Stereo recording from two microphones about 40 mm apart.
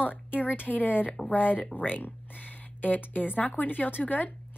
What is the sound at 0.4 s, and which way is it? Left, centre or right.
Speech, left.